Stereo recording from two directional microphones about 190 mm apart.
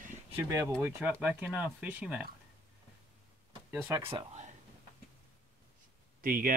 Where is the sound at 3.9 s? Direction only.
20° right (ahead or behind).